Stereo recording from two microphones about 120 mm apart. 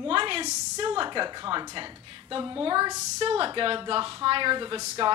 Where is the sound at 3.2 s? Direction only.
50° right (ahead or behind).